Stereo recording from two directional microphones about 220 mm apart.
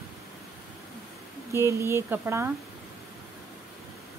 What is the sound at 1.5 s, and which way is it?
Speech, 10° right (ahead or behind).